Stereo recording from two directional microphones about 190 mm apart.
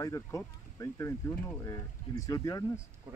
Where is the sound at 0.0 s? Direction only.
15° left (ahead or behind).